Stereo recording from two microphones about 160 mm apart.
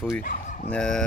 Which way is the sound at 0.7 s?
5° left (ahead or behind).